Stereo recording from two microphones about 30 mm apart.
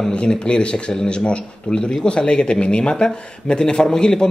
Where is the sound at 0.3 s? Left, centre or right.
Left.